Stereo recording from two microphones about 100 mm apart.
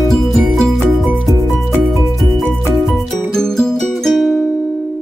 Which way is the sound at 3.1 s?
5° left (ahead or behind).